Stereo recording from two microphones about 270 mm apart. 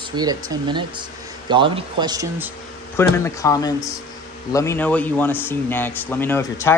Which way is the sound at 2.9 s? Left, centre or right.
Centre.